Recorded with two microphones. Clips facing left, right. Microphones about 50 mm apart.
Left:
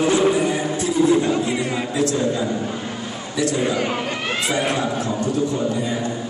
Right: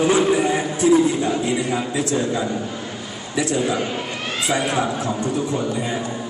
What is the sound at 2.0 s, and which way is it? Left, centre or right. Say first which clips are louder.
Speech: left 4 dB; right.